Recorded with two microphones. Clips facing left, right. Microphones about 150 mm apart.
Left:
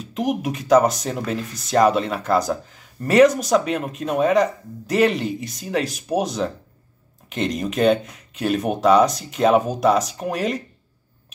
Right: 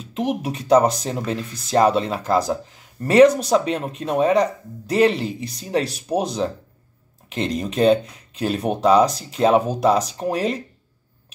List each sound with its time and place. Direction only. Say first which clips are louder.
0.0 s speech: left 1 dB; 30° right (ahead or behind)